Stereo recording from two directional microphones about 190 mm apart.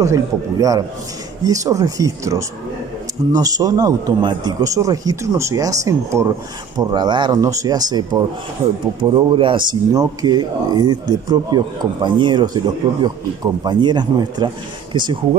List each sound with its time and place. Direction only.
0.0 s speech: 15° right (ahead or behind)